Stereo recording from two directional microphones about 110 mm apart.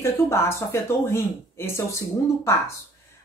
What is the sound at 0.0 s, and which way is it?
A woman's voice, 25° left (ahead or behind).